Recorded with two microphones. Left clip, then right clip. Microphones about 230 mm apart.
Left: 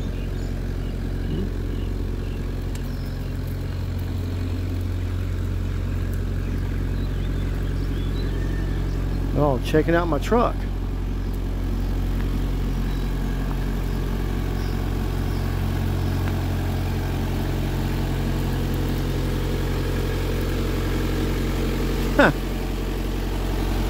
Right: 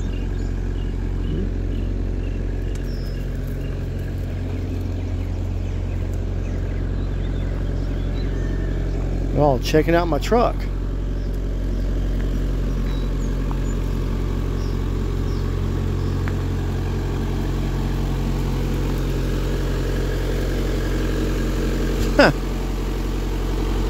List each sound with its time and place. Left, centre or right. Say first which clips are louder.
9.4 s speech: right 3 dB; centre
18.2 s vehicle: right 1 dB; centre
22.1 s vehicle: right 3 dB; centre
23.6 s vehicle: right 2 dB; centre